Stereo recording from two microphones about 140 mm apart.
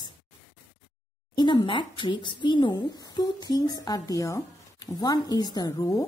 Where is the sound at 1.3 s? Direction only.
30° left (ahead or behind).